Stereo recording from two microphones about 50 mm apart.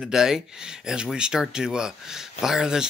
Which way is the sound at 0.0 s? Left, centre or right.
Centre.